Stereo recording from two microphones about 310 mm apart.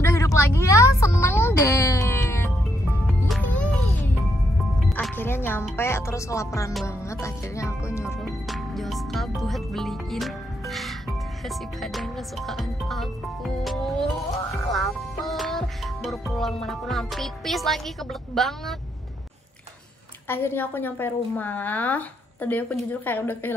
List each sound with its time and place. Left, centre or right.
0.0 s a sound: centre
3.1 s music: centre
14.5 s speech: centre
20.2 s a woman's voice: centre